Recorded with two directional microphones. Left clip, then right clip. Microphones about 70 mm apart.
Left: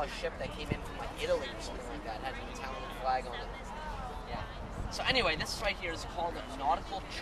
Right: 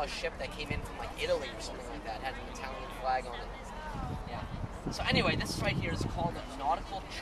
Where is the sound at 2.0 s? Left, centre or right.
Right.